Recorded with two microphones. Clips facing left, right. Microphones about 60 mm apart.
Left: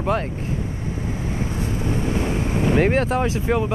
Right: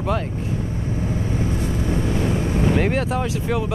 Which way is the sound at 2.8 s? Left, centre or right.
Centre.